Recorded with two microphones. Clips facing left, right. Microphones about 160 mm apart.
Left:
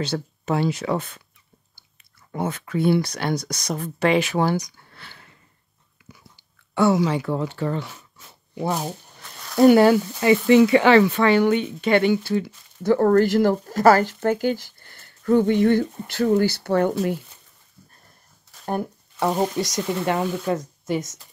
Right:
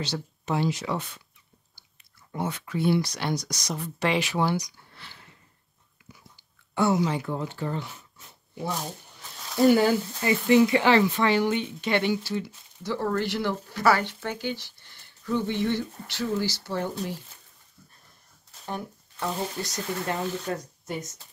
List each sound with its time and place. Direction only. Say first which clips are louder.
0.0 s speech: left 6 dB; 55° left (ahead or behind)
2.3 s speech: left 5 dB; 55° left (ahead or behind)
6.7 s speech: left 5 dB; 90° left; by 17.2 s 65° left (ahead or behind)
19.1 s speech: left 9 dB; 80° left